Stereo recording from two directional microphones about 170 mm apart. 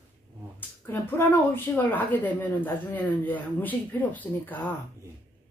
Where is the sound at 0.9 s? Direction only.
10° left (ahead or behind).